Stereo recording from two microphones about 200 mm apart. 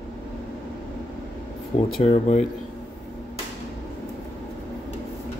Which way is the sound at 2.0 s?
30° left (ahead or behind).